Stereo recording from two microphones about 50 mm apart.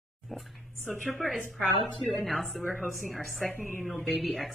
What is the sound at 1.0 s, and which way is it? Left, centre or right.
Speech, centre.